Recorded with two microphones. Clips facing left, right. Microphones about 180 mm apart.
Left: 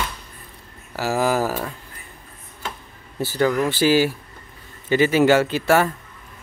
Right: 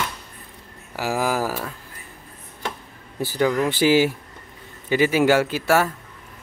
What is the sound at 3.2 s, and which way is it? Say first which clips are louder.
Speech: left 1 dB; 15° right (ahead or behind).